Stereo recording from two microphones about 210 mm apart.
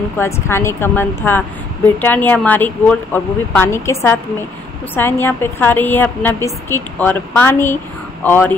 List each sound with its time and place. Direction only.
0.2 s a woman's voice: 10° left (ahead or behind)